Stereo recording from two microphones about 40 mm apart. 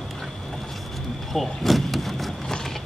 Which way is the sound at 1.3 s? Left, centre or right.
Centre.